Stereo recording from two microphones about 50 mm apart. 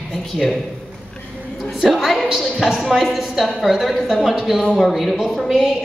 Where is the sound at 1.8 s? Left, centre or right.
Centre.